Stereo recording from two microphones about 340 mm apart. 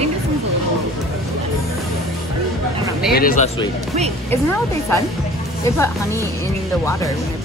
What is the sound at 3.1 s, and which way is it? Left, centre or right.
Speech, left.